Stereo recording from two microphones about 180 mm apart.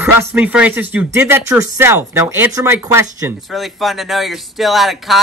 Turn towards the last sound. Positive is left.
turn(degrees=0)  # may be behind; listen again after turning